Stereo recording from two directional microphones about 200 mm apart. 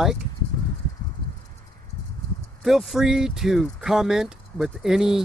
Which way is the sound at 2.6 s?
Centre (ahead or behind).